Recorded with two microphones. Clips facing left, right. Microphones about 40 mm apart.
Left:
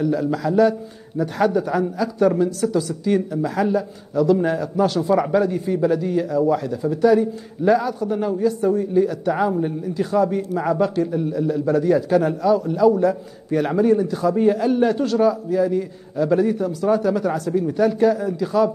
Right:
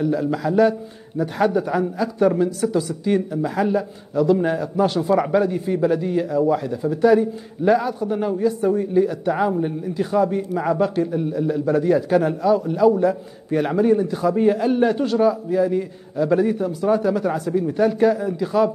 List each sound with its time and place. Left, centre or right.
0.2 s a man's voice: centre
3.2 s a man's voice: centre